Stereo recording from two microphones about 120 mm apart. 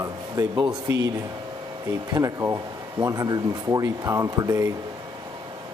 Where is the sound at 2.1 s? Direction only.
30° right (ahead or behind).